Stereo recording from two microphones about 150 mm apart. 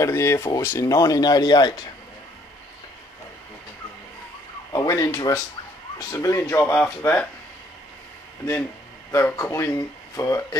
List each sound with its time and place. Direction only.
0.0 s speech: 20° left (ahead or behind)
4.7 s speech: 20° left (ahead or behind)
9.1 s speech: 20° left (ahead or behind)